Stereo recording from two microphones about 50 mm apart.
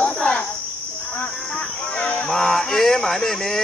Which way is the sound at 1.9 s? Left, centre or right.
Left.